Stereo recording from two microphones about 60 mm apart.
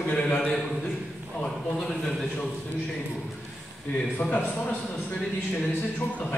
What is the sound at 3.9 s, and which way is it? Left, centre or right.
Speech, left.